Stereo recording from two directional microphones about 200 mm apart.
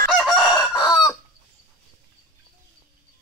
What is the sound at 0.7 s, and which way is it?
Chicken, 20° left (ahead or behind).